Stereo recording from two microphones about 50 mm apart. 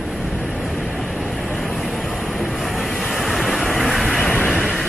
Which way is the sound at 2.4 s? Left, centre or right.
Centre.